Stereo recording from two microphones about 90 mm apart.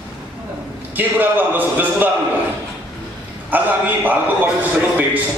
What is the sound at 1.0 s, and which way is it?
A man's voice, 20° right (ahead or behind).